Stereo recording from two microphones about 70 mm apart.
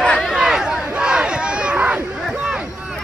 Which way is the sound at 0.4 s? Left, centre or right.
Centre.